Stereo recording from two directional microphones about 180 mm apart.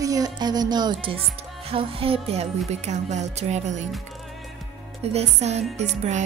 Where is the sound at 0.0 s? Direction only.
20° right (ahead or behind).